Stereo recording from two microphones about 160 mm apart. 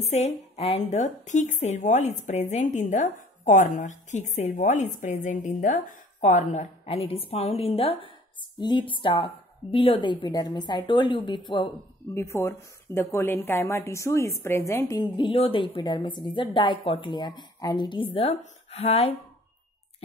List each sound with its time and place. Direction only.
0.0 s a woman's voice: 45° left (ahead or behind)
12.1 s a woman's voice: 15° left (ahead or behind)
15.0 s a woman's voice: 30° left (ahead or behind)